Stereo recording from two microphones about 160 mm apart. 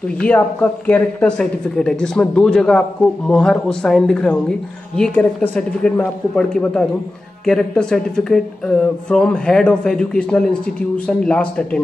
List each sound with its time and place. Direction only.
0.2 s speech: 10° left (ahead or behind)